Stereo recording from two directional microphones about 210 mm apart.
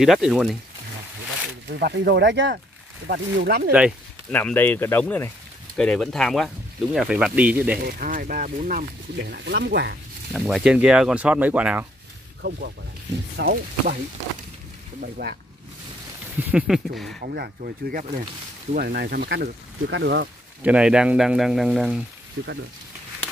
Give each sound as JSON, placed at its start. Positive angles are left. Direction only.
{"t": 0.0, "sound": "speech", "side_deg": 0}
{"t": 1.7, "sound": "speech", "side_deg": -50}
{"t": 4.3, "sound": "speech", "side_deg": 10}
{"t": 7.8, "sound": "speech", "side_deg": -40}
{"t": 10.3, "sound": "speech", "side_deg": 0}
{"t": 12.4, "sound": "speech", "side_deg": -55}
{"t": 16.3, "sound": "speech", "side_deg": -5}
{"t": 17.2, "sound": "speech", "side_deg": -45}
{"t": 20.6, "sound": "speech", "side_deg": -5}